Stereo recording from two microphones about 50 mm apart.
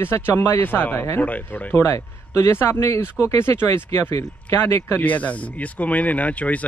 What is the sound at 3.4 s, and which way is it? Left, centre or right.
Speech, left.